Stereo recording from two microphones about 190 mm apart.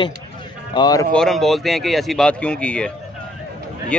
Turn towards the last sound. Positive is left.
turn(degrees=5)  # may be behind; listen again after turning